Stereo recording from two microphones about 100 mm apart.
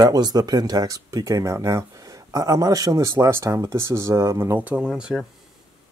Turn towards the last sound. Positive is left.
turn(degrees=-5)  # may be behind; listen again after turning